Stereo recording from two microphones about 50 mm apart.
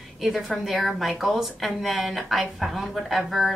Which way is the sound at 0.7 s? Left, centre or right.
Centre.